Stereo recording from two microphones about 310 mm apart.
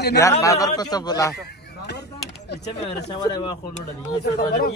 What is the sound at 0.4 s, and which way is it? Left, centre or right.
Speech, centre.